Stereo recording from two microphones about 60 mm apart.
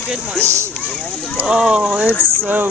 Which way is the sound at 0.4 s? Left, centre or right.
Right.